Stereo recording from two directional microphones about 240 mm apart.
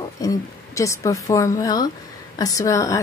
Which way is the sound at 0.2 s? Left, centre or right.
Centre.